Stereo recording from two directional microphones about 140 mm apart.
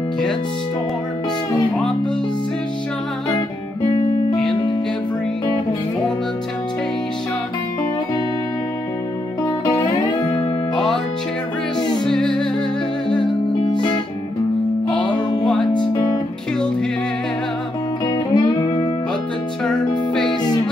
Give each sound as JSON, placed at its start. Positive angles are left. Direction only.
{"t": 9.4, "sound": "music", "side_deg": 25}
{"t": 12.0, "sound": "music", "side_deg": 5}
{"t": 13.2, "sound": "music", "side_deg": 35}
{"t": 15.4, "sound": "music", "side_deg": 5}
{"t": 18.0, "sound": "music", "side_deg": 30}